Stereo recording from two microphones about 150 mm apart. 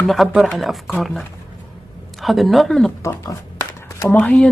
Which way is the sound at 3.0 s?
20° left (ahead or behind).